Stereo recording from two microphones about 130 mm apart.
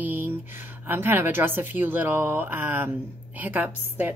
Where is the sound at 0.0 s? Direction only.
15° right (ahead or behind).